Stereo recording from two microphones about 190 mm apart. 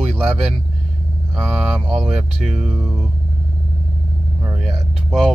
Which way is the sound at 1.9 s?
5° right (ahead or behind).